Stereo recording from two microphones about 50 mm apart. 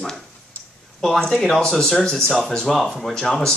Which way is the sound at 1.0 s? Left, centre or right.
Centre.